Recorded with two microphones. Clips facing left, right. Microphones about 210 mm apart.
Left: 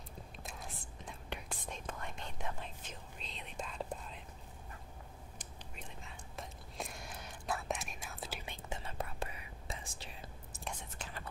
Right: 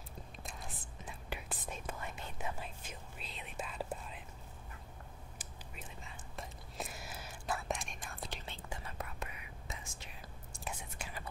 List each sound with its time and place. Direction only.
0.4 s whispering: centre (ahead or behind)
5.4 s whispering: 5° right (ahead or behind)
8.6 s whispering: 25° left (ahead or behind)
10.5 s whispering: 5° right (ahead or behind)